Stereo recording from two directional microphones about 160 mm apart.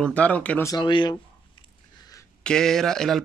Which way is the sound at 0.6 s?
25° left (ahead or behind).